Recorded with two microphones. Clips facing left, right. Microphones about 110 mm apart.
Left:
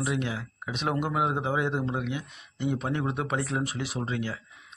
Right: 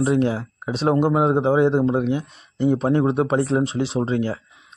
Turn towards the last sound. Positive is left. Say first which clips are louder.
# right 10 dB
turn(degrees=-35)  # may be behind; listen again after turning